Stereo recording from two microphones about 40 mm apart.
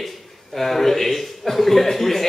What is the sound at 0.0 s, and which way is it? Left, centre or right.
A man's voice, centre.